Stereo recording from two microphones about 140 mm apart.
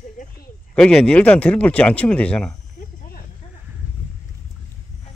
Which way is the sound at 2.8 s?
75° left (ahead or behind).